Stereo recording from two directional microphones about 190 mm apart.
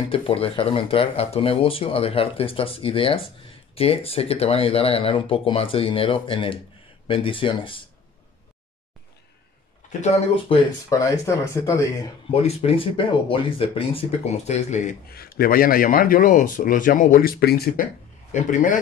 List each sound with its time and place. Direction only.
0.1 s speech: 30° left (ahead or behind)
10.3 s speech: 25° left (ahead or behind)
11.0 s speech: 15° left (ahead or behind)
12.3 s speech: 30° left (ahead or behind)
15.0 s speech: 50° left (ahead or behind)
18.3 s speech: 45° left (ahead or behind)